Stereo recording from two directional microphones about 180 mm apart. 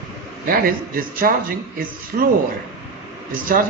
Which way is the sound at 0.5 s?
55° right (ahead or behind).